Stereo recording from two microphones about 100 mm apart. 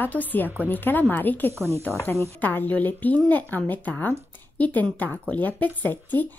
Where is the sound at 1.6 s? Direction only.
25° right (ahead or behind).